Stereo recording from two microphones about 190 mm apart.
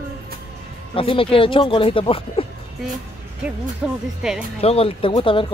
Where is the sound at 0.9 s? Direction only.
30° left (ahead or behind).